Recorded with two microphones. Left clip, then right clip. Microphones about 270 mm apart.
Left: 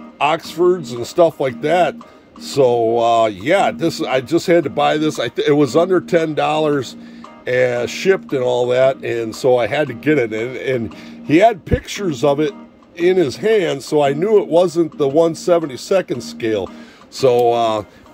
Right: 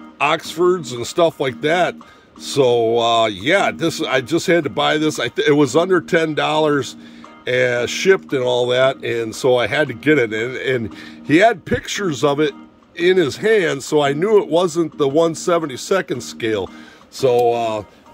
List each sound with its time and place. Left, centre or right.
0.2 s a man's voice: centre